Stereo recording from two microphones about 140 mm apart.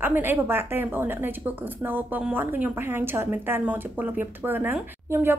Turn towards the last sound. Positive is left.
turn(degrees=-15)  # may be behind; listen again after turning